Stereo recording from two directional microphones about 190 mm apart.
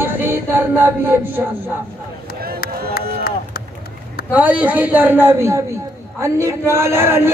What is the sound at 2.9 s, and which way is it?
Run, 50° left (ahead or behind).